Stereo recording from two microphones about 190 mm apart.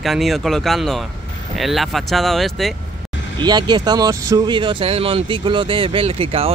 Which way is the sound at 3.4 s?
20° right (ahead or behind).